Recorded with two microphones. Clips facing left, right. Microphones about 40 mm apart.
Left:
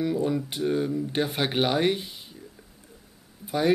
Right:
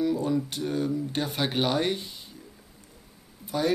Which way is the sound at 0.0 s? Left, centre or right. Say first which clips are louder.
Even; centre.